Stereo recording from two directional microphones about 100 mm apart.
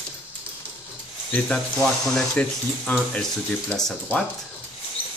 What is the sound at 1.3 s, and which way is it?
Speech, 10° left (ahead or behind).